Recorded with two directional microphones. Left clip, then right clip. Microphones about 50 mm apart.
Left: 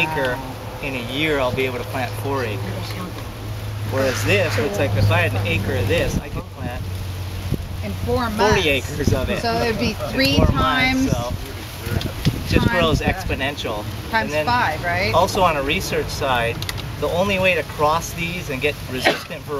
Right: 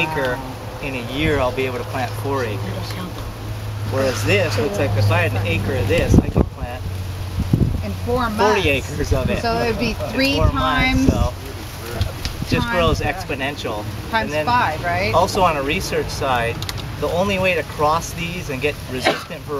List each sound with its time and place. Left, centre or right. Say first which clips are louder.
0.0 s speech: even; centre
3.9 s speech: even; left
4.2 s speech: right 1 dB; centre
8.2 s speech: right 1 dB; left
9.4 s speech: right 1 dB; left
12.4 s speech: even; centre
14.1 s speech: right 1 dB; left
15.1 s speech: right 1 dB; centre